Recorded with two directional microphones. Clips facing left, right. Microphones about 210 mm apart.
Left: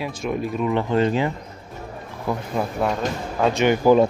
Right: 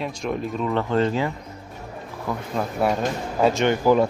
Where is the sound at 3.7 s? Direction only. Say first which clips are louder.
Left 6 dB; 20° left (ahead or behind).